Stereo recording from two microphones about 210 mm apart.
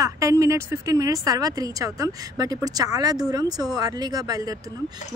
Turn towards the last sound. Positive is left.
turn(degrees=-15)  # may be behind; listen again after turning